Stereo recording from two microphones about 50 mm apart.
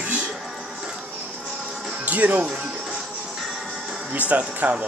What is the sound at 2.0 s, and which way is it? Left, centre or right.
Speech, right.